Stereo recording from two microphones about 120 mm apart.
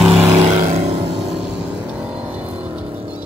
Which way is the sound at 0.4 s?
70° right (ahead or behind).